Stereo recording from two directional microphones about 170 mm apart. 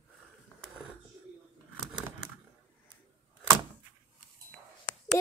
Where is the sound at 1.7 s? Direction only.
5° right (ahead or behind).